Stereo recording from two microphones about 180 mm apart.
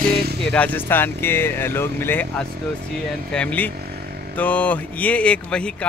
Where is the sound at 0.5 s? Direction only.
10° left (ahead or behind).